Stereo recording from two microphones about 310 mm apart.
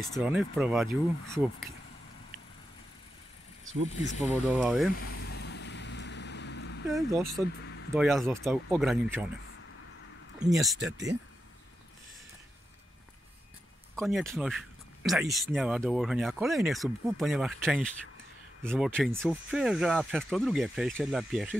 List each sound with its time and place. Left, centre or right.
0.1 s speech: centre
4.2 s speech: centre
5.0 s vehicle: left
6.9 s speech: centre
10.5 s speech: centre
13.9 s speech: centre